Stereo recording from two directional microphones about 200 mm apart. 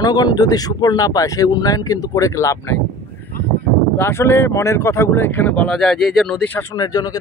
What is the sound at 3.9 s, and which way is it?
Speech, 10° left (ahead or behind).